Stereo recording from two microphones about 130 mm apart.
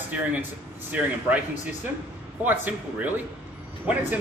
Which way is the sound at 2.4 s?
15° right (ahead or behind).